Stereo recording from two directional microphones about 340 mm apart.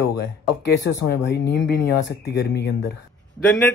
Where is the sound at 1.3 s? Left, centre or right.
Left.